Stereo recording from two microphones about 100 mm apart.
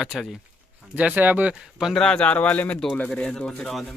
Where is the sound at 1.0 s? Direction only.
15° right (ahead or behind).